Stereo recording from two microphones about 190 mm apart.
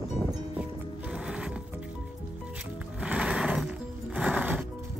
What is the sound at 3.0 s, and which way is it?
Music, 5° right (ahead or behind).